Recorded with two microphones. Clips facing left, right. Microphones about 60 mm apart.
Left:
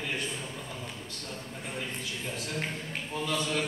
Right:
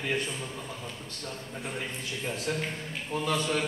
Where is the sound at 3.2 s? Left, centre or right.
Right.